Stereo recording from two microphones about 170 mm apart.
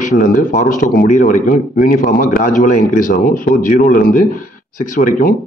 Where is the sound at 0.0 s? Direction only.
50° left (ahead or behind).